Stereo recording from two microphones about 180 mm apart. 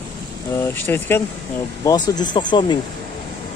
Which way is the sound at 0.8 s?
10° left (ahead or behind).